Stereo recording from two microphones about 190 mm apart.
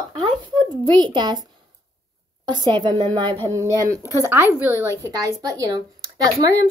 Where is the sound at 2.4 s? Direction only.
20° right (ahead or behind).